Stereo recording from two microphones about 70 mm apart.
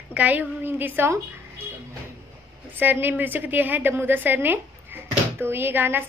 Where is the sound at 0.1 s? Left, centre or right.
Right.